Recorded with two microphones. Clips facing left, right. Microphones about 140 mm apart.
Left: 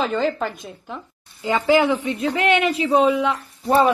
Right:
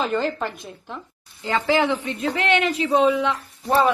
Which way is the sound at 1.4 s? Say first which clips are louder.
Left 3 dB; 10° left (ahead or behind).